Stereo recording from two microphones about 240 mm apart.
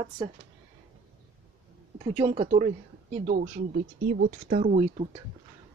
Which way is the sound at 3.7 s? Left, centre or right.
Right.